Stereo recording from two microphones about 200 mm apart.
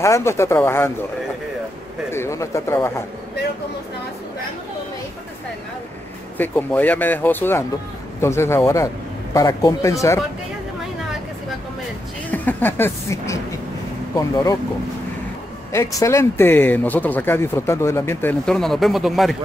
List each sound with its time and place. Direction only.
0.0 s speech: 15° left (ahead or behind)
2.0 s speech: 15° left (ahead or behind)
6.3 s a man's voice: 10° left (ahead or behind)
12.3 s speech: 10° left (ahead or behind)
15.7 s speech: 15° left (ahead or behind); by 19.3 s centre (ahead or behind)